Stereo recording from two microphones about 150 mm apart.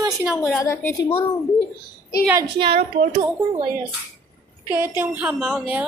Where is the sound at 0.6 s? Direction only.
15° left (ahead or behind).